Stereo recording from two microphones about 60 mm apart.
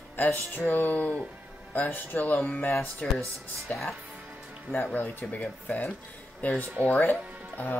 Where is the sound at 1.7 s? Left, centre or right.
Left.